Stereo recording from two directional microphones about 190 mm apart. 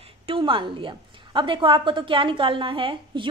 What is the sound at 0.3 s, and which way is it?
A woman's voice, 25° right (ahead or behind).